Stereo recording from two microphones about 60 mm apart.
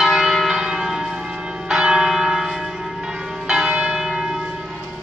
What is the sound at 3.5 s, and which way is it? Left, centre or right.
Church bell, centre.